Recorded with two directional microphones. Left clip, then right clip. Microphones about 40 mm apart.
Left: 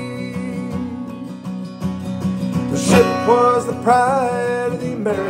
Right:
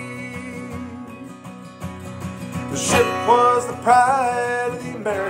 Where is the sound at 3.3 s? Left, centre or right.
Centre.